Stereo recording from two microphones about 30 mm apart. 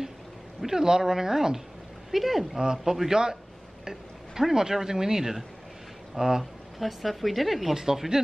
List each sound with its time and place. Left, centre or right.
0.7 s speech: right
2.0 s speech: centre
2.5 s a man's voice: right
2.8 s speech: centre
3.1 s a man's voice: right
4.4 s a man's voice: centre
6.8 s speech: centre
7.7 s speech: centre